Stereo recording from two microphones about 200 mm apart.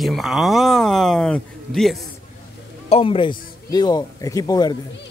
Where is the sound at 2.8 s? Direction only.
25° left (ahead or behind).